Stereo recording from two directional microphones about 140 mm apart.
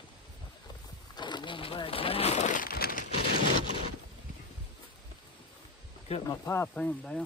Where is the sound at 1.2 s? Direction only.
35° left (ahead or behind); by 3.0 s 90° left.